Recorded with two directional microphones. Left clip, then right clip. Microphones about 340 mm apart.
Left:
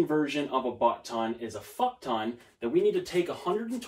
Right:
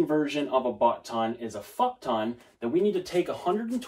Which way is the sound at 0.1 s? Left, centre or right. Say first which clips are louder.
Right 2 dB; centre.